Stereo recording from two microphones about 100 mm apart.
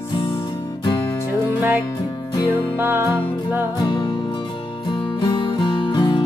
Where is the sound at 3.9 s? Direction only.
50° left (ahead or behind).